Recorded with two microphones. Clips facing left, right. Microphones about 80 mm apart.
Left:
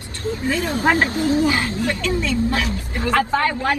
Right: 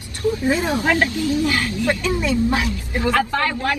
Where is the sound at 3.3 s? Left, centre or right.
Centre.